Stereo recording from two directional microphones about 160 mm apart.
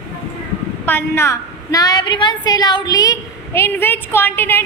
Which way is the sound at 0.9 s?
15° left (ahead or behind).